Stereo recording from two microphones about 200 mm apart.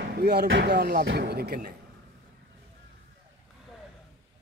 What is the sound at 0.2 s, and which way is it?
Speech, 55° right (ahead or behind).